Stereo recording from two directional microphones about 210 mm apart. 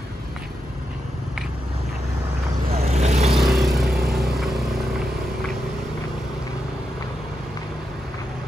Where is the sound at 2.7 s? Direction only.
30° right (ahead or behind).